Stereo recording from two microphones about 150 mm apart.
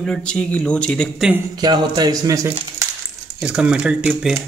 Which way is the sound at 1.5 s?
25° right (ahead or behind).